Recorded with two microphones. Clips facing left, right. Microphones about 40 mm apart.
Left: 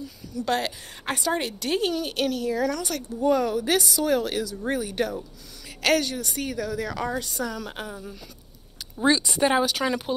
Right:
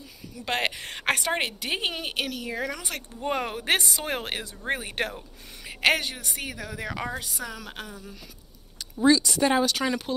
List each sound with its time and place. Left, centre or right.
0.6 s a woman's voice: right
1.6 s speech: right
2.1 s speech: centre
2.4 s speech: right
3.2 s a woman's voice: right
5.8 s a woman's voice: right
7.2 s speech: centre
9.0 s speech: left; by 10.1 s centre